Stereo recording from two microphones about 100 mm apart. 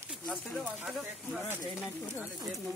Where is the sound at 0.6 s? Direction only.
10° right (ahead or behind).